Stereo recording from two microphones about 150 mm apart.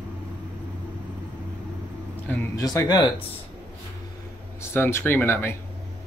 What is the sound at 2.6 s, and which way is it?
Speech, 25° left (ahead or behind).